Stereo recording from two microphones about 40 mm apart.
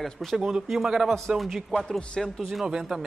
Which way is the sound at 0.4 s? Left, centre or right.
Centre.